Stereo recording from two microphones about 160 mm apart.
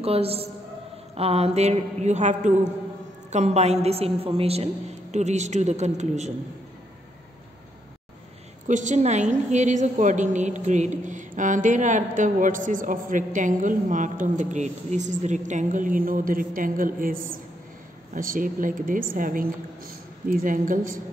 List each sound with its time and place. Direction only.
0.0 s a woman's voice: 40° right (ahead or behind)
8.6 s a woman's voice: 50° right (ahead or behind)